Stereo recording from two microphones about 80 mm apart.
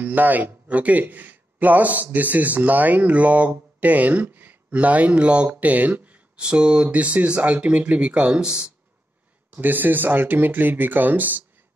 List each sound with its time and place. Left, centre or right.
0.0 s speech: right
9.5 s speech: right